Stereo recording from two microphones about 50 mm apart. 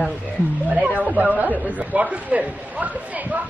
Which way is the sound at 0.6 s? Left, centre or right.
Right.